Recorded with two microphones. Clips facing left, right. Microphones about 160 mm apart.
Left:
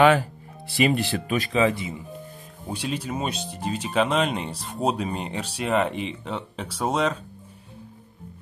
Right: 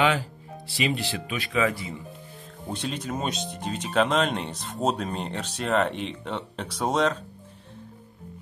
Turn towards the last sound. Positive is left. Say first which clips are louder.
# even
turn(degrees=5)  # may be behind; listen again after turning